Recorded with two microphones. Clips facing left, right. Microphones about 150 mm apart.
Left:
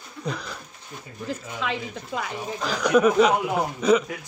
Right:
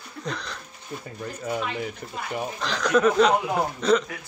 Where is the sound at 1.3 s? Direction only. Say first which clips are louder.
Even; 90° left.